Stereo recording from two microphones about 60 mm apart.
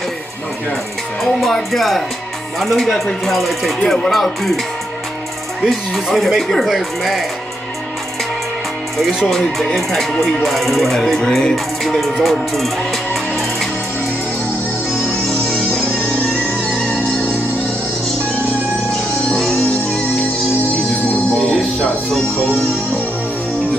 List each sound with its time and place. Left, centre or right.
1.2 s speech: centre
5.6 s speech: centre
9.3 s speech: centre
14.9 s music: centre
16.8 s music: left
19.3 s music: centre